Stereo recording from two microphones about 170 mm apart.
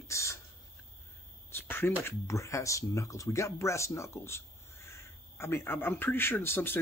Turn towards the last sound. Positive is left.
turn(degrees=15)  # may be behind; listen again after turning